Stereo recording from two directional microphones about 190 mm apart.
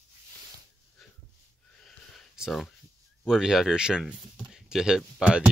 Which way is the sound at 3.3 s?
Centre (ahead or behind).